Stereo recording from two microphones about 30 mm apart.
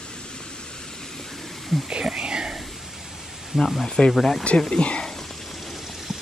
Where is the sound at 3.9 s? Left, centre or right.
Left.